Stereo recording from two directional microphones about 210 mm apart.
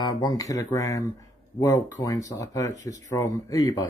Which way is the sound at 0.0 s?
20° left (ahead or behind).